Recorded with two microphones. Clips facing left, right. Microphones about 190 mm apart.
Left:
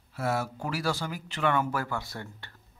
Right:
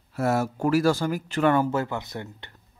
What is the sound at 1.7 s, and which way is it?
Speech, 20° right (ahead or behind).